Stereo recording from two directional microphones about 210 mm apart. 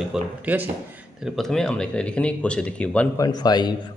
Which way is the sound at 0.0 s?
5° right (ahead or behind).